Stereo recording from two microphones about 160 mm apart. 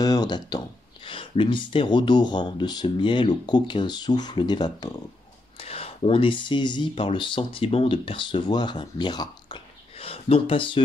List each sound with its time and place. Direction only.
0.0 s speech: 25° left (ahead or behind)
5.6 s speech: 35° left (ahead or behind)